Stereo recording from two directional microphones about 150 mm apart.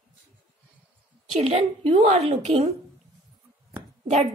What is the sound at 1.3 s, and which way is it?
Speech, 45° right (ahead or behind).